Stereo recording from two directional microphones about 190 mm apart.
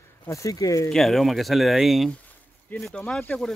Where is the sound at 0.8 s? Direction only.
Centre (ahead or behind).